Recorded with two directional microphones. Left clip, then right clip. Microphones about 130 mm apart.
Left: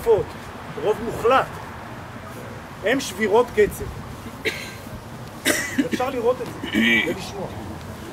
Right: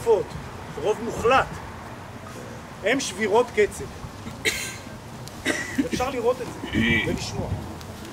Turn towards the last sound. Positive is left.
turn(degrees=40)  # may be behind; listen again after turning